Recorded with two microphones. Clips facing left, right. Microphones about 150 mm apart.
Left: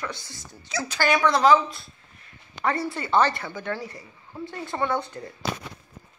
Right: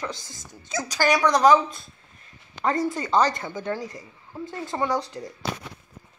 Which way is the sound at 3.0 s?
15° right (ahead or behind).